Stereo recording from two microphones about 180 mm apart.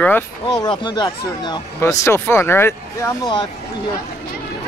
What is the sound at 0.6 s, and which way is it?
Speech, 25° left (ahead or behind).